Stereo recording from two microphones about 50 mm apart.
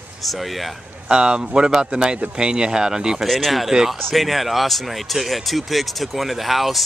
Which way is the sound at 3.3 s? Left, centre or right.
Centre.